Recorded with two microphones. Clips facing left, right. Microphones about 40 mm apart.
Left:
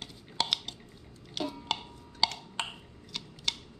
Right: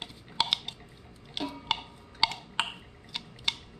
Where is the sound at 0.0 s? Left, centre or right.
Centre.